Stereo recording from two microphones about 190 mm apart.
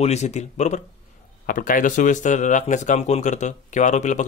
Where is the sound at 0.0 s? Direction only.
35° left (ahead or behind).